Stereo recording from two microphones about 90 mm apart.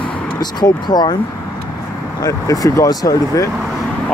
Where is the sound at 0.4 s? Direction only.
50° left (ahead or behind).